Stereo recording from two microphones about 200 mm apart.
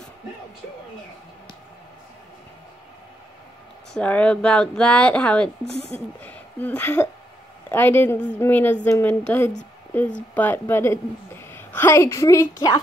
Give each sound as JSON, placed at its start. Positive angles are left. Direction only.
{"t": 3.9, "sound": "speech", "side_deg": 5}
{"t": 5.7, "sound": "speech", "side_deg": 35}
{"t": 6.2, "sound": "a woman's voice", "side_deg": 5}